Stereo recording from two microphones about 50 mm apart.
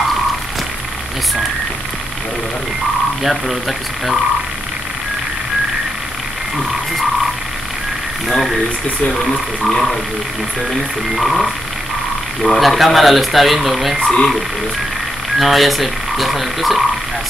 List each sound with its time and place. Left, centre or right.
3.3 s speech: centre
8.3 s speech: centre
9.7 s speech: centre
11.1 s speech: centre
12.5 s speech: centre
13.9 s speech: centre
15.3 s speech: centre